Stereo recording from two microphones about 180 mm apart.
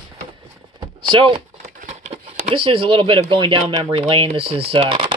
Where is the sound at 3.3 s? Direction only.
30° right (ahead or behind).